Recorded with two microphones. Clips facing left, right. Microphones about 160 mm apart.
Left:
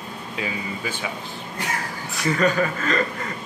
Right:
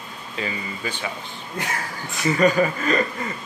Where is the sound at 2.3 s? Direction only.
10° right (ahead or behind).